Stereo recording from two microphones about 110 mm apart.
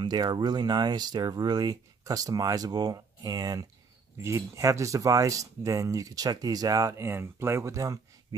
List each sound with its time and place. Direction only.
0.0 s speech: 40° right (ahead or behind)